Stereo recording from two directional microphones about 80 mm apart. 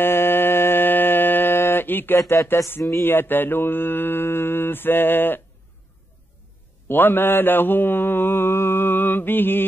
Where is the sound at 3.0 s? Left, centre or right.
Left.